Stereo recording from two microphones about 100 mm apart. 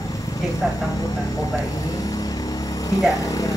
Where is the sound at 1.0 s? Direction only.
35° left (ahead or behind).